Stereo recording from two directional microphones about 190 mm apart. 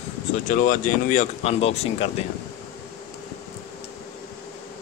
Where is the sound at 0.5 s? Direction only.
45° left (ahead or behind).